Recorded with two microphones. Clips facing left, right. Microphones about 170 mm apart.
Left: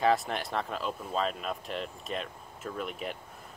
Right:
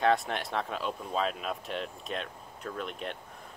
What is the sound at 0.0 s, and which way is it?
Speech, centre (ahead or behind).